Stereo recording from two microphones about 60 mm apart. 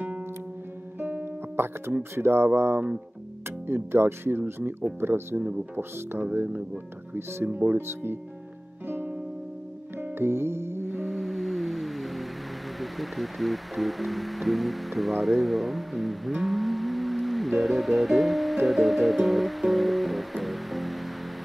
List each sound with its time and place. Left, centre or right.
0.9 s music: right
2.1 s speech: right
8.8 s music: right
11.0 s music: centre
12.8 s speech: centre